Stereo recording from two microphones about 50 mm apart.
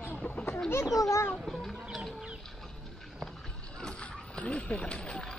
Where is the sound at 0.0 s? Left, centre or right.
Left.